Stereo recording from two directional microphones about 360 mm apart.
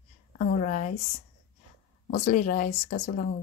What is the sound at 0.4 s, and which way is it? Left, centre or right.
Speech, left.